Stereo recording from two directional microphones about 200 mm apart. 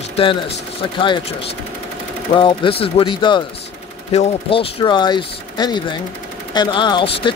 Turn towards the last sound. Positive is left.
turn(degrees=25)  # may be behind; listen again after turning